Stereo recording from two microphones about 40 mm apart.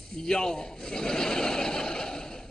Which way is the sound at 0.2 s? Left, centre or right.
Centre.